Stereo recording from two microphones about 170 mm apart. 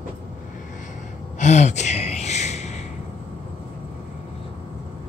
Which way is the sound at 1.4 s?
45° left (ahead or behind).